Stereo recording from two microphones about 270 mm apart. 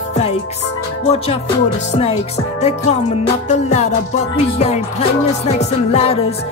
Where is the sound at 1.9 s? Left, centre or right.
Left.